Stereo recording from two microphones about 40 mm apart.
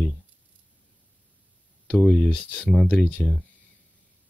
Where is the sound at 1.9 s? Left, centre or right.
Centre.